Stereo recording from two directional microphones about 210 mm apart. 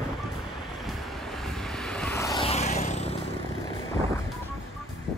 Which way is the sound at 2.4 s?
30° left (ahead or behind).